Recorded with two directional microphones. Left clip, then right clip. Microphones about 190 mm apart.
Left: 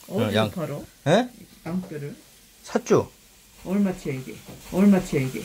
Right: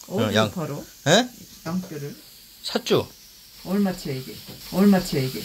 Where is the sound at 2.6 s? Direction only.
15° left (ahead or behind).